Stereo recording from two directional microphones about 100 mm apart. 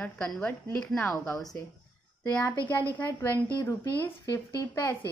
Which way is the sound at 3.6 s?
25° left (ahead or behind).